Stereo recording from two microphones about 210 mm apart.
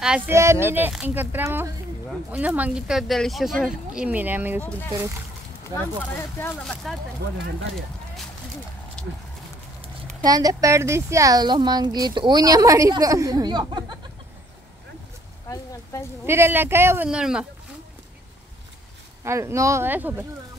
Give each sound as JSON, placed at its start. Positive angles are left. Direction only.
{"t": 0.0, "sound": "speech", "side_deg": -10}
{"t": 5.8, "sound": "speech", "side_deg": 10}
{"t": 10.2, "sound": "speech", "side_deg": -20}
{"t": 15.4, "sound": "a sound", "side_deg": 15}
{"t": 16.3, "sound": "speech", "side_deg": -10}
{"t": 19.2, "sound": "speech", "side_deg": -15}